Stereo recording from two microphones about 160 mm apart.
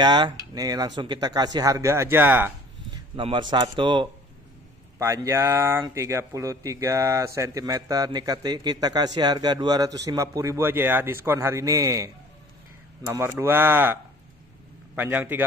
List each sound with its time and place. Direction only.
0.0 s speech: 25° right (ahead or behind)
2.9 s speech: 30° right (ahead or behind)
4.9 s speech: 20° right (ahead or behind)
15.0 s speech: 10° right (ahead or behind)